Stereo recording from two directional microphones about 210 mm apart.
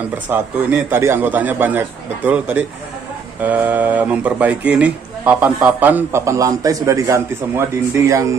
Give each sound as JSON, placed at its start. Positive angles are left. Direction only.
{"t": 0.3, "sound": "speech", "side_deg": -10}